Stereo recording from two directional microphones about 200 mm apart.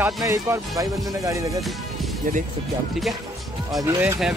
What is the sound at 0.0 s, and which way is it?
Speech, 15° right (ahead or behind).